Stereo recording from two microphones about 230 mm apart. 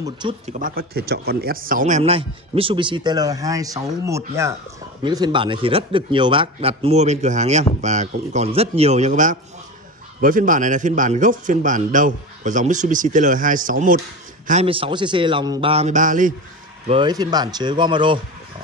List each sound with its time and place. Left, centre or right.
0.0 s speech: centre
0.5 s a man's voice: right
14.5 s speech: right
16.8 s speech: right